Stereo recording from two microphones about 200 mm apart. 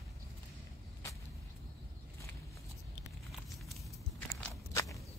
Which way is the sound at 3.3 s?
Centre (ahead or behind).